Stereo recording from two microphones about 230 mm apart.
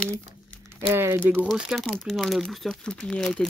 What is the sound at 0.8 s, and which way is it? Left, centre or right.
Speech, centre.